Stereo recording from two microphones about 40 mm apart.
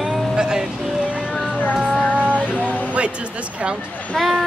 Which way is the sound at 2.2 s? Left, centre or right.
Right.